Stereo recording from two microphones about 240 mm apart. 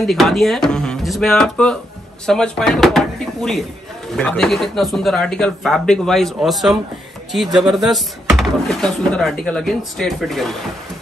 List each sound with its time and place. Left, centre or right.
0.0 s speech: centre
7.4 s speech: centre
7.7 s speech: centre